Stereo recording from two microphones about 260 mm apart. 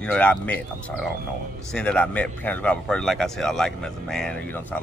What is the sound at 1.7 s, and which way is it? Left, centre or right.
Speech, centre.